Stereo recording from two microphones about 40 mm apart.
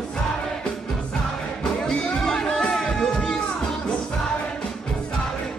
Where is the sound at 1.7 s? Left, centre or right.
Centre.